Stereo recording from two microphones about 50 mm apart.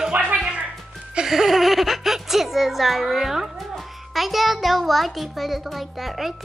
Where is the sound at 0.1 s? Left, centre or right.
Right.